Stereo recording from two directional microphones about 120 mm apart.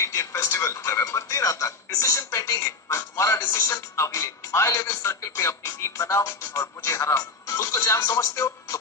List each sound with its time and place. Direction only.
0.0 s a man's voice: 25° left (ahead or behind)